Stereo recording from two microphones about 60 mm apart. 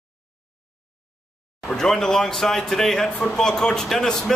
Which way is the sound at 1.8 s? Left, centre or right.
Centre.